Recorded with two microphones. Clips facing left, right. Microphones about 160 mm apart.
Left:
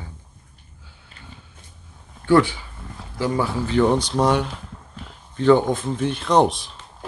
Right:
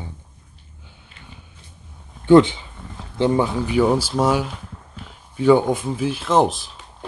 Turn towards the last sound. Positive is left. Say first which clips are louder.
# even
turn(degrees=0)  # may be behind; listen again after turning